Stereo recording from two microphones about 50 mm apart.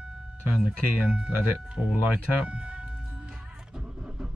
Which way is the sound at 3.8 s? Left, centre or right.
Centre.